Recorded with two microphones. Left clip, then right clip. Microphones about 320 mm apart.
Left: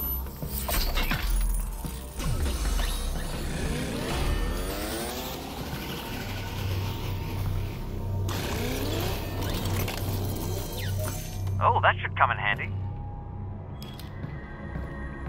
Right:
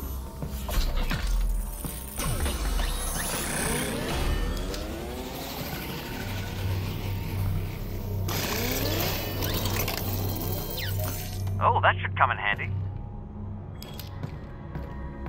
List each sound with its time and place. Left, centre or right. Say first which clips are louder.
0.7 s music: left 4 dB; centre
1.8 s music: right 4 dB; centre
2.6 s music: even; centre
3.2 s music: right 5 dB; right
3.8 s music: right 1 dB; centre
4.6 s music: left 3 dB; centre
5.4 s vehicle: right 1 dB; centre
8.3 s a sound: right 3 dB; centre
11.5 s music: even; centre